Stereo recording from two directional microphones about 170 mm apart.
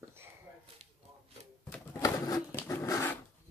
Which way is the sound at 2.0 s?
15° left (ahead or behind).